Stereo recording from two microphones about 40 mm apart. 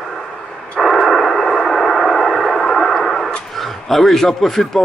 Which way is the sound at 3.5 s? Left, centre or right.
Centre.